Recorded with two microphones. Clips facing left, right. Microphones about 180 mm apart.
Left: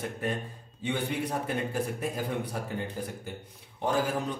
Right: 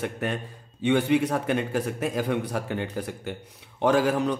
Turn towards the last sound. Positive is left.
turn(degrees=-80)